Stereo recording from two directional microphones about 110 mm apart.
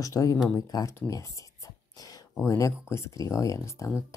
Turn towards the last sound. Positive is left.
turn(degrees=30)  # may be behind; listen again after turning